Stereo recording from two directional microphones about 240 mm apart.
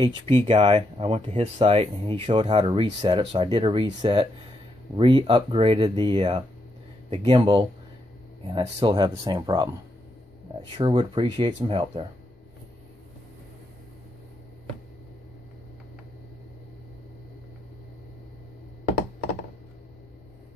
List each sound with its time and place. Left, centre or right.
0.5 s speech: right